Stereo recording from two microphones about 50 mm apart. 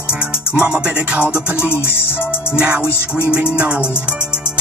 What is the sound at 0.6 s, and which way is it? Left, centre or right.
Music, centre.